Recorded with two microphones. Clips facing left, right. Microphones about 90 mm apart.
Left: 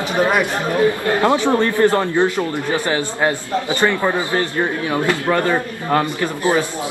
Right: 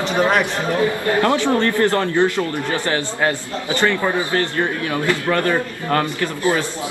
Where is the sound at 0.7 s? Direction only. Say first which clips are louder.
Left 2 dB; 20° left (ahead or behind).